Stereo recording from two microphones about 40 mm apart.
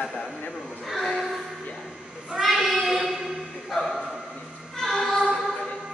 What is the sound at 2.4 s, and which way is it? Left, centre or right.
Child singing, centre.